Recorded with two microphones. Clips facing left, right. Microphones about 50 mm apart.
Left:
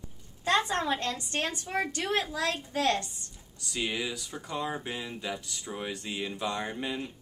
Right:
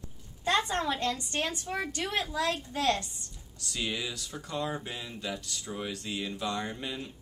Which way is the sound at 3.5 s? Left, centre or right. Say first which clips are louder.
Left 2 dB; centre.